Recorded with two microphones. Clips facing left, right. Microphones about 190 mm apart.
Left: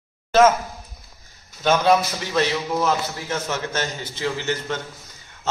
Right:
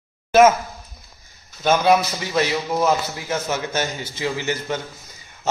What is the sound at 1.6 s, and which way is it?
A man's voice, 10° right (ahead or behind).